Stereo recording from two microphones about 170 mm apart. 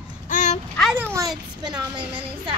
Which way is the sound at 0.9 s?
15° right (ahead or behind).